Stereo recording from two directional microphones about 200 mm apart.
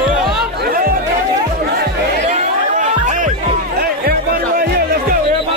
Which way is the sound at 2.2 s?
40° right (ahead or behind).